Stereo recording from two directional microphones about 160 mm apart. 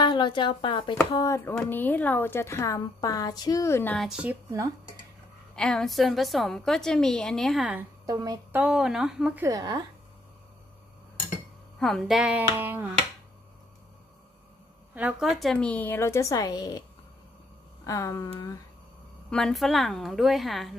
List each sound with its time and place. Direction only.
0.0 s speech: 30° left (ahead or behind)
1.1 s a woman's voice: 20° left (ahead or behind)
4.1 s a sound: 10° right (ahead or behind)
5.6 s a woman's voice: 5° left (ahead or behind)
8.1 s a woman's voice: 25° right (ahead or behind)
8.5 s a woman's voice: 5° right (ahead or behind)
9.5 s a woman's voice: 25° right (ahead or behind)
11.8 s a sound: centre (ahead or behind)
15.0 s a woman's voice: 5° right (ahead or behind); by 16.8 s 25° left (ahead or behind)
17.8 s speech: 20° left (ahead or behind)
19.3 s a woman's voice: centre (ahead or behind)